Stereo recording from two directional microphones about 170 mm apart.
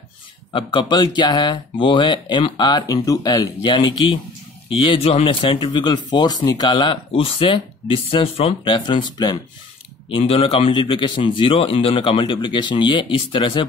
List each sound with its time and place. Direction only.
0.5 s speech: 30° left (ahead or behind)